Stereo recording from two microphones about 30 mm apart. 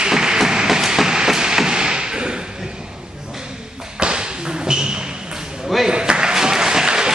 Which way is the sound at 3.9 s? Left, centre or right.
Right.